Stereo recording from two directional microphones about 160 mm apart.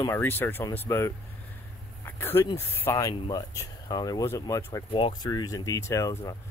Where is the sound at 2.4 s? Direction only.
15° left (ahead or behind).